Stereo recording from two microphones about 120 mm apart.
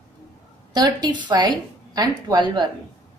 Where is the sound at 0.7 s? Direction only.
35° right (ahead or behind).